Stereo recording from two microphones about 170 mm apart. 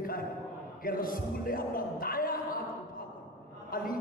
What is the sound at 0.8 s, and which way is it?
Speech, 55° left (ahead or behind).